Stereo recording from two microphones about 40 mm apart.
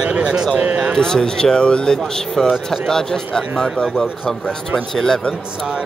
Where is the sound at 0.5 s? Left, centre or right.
Right.